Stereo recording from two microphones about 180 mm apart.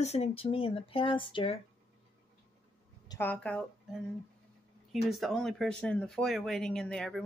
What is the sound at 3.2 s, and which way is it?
Speech, 10° left (ahead or behind).